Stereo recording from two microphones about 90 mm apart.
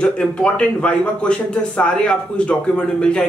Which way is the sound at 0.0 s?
10° left (ahead or behind).